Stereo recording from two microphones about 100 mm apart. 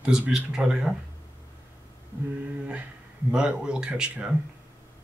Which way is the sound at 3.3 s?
10° right (ahead or behind).